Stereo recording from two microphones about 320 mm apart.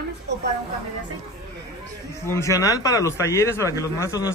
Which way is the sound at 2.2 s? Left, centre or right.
Centre.